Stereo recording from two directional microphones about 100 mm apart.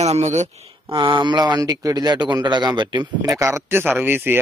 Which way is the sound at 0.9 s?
55° right (ahead or behind).